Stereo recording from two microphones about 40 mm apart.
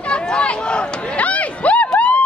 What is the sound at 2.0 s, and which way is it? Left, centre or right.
Police car, left.